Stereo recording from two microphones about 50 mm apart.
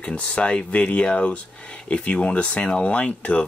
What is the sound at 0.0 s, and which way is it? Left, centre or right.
Speech, left.